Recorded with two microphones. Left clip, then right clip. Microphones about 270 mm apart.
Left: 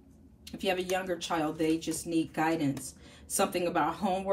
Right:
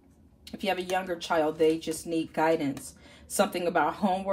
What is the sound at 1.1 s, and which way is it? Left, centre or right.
A woman's voice, right.